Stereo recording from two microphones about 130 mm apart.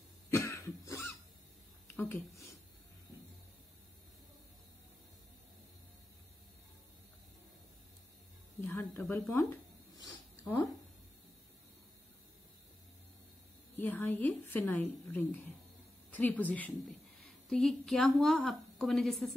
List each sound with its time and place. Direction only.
0.3 s cough: 25° left (ahead or behind)
2.0 s speech: 15° left (ahead or behind)
8.5 s a sound: 15° left (ahead or behind)
9.3 s speech: 20° left (ahead or behind)
9.9 s a sound: 25° left (ahead or behind)
13.7 s a woman's voice: 15° left (ahead or behind)